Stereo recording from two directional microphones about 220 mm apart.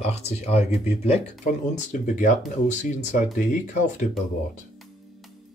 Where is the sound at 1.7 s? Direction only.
35° left (ahead or behind).